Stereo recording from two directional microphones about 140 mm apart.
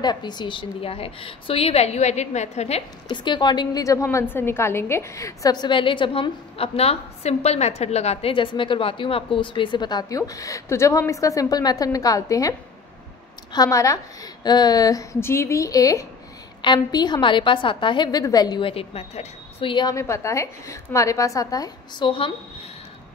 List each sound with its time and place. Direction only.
0.0 s a woman's voice: 30° left (ahead or behind); by 2.8 s 50° left (ahead or behind)
3.1 s a woman's voice: 30° left (ahead or behind)
19.7 s a woman's voice: 30° left (ahead or behind)